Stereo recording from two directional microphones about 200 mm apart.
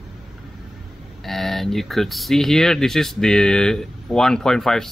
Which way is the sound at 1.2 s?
Centre (ahead or behind).